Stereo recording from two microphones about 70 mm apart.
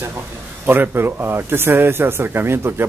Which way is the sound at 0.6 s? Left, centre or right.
Right.